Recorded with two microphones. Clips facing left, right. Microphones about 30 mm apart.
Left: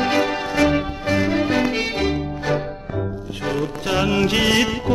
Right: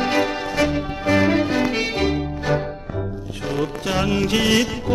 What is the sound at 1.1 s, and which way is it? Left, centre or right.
Music, centre.